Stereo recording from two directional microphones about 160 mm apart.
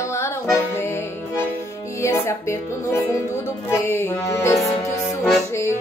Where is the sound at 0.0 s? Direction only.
15° left (ahead or behind).